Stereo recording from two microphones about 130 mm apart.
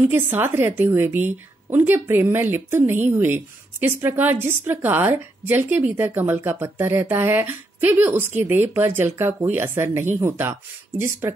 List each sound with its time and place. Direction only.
0.0 s a woman's voice: 15° right (ahead or behind)